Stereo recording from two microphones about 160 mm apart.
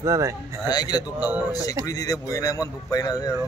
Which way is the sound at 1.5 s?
20° left (ahead or behind).